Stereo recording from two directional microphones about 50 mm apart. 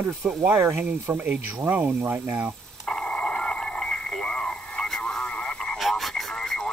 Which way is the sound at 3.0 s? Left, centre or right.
Left.